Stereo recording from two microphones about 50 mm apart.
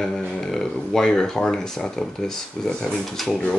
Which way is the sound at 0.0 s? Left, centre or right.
Centre.